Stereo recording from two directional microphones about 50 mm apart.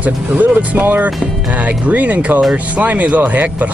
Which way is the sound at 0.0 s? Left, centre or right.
Right.